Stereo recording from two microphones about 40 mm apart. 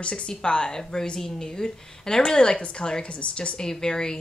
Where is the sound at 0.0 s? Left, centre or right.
Left.